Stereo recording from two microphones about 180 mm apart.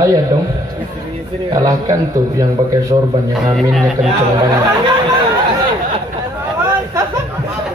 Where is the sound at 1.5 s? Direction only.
20° right (ahead or behind).